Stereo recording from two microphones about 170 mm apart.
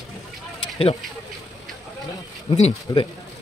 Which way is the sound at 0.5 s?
35° left (ahead or behind).